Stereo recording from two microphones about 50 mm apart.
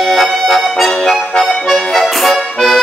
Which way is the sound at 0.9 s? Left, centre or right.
Centre.